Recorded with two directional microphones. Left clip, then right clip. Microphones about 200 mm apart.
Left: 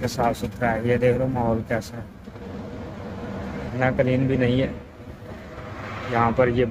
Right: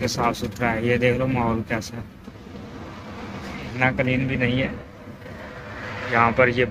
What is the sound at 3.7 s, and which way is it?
Speech, 20° left (ahead or behind).